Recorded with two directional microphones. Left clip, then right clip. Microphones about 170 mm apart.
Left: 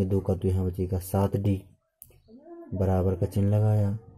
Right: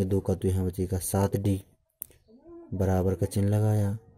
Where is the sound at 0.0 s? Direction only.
40° right (ahead or behind).